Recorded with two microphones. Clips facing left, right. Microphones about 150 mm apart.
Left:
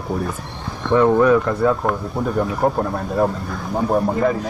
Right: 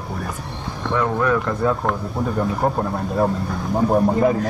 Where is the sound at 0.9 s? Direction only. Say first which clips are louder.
Left 7 dB; 20° left (ahead or behind).